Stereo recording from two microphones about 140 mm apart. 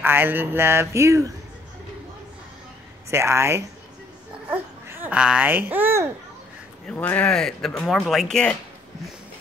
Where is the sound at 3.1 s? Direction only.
20° right (ahead or behind).